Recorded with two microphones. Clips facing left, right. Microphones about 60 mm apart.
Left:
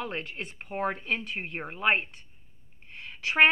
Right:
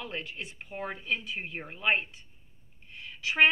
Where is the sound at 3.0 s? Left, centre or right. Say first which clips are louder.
Left 2 dB; left.